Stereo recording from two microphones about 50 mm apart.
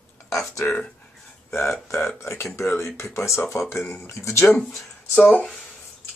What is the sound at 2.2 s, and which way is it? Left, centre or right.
Speech, left.